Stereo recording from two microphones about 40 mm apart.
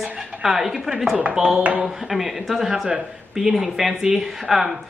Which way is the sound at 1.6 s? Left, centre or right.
Right.